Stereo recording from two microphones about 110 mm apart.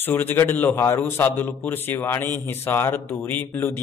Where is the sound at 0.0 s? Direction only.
20° left (ahead or behind).